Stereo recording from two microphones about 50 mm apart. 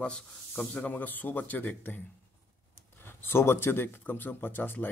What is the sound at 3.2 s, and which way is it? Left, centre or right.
Speech, left.